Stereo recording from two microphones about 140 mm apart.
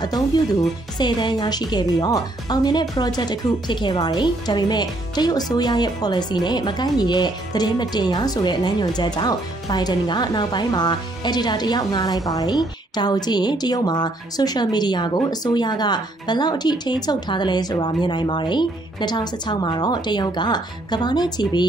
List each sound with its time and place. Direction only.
0.9 s a woman's voice: 30° left (ahead or behind)